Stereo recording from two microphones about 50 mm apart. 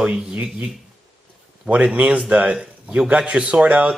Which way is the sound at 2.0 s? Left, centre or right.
Right.